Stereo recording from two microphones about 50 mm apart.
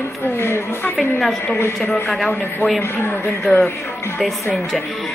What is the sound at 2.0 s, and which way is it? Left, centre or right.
Speech, centre.